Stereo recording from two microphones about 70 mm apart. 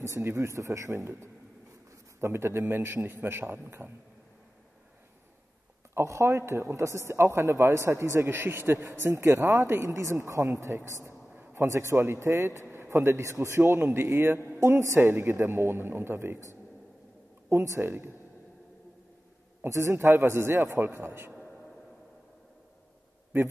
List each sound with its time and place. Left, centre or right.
0.0 s a man's voice: right
5.9 s a man's voice: right
13.6 s a man's voice: right
17.5 s a man's voice: right
19.7 s a man's voice: right